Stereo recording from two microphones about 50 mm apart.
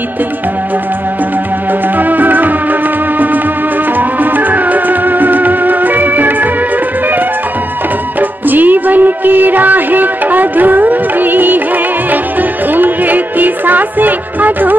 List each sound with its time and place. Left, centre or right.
2.0 s music: right
4.2 s music: right
8.2 s music: right